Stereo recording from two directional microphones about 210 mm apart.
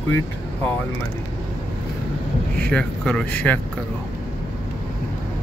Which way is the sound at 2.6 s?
5° left (ahead or behind).